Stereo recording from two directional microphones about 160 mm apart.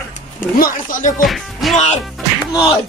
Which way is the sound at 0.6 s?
55° left (ahead or behind).